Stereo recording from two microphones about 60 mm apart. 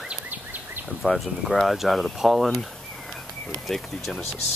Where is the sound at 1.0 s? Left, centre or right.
Centre.